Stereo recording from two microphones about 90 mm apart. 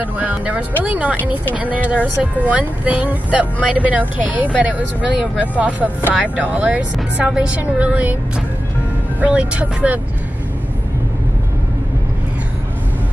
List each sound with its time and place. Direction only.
0.0 s speech: 15° right (ahead or behind)
9.2 s speech: 15° right (ahead or behind)